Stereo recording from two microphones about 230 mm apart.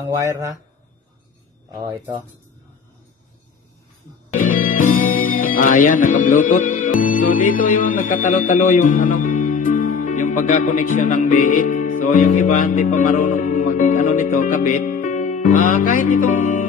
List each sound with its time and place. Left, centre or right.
0.2 s speech: centre
1.7 s speech: centre
4.3 s speech: left